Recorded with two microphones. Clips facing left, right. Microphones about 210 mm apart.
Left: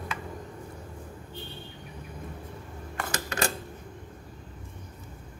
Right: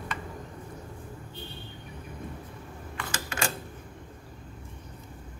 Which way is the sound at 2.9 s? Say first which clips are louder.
Left 4 dB; 35° left (ahead or behind).